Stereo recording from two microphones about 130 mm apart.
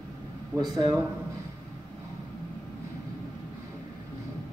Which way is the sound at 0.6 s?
30° right (ahead or behind).